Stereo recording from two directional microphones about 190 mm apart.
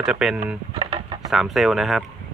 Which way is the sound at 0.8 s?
30° right (ahead or behind).